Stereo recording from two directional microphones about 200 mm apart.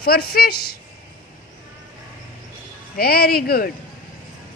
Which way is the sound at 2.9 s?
50° left (ahead or behind).